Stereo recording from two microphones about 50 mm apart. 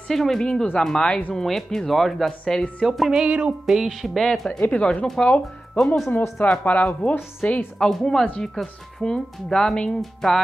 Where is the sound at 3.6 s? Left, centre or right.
Centre.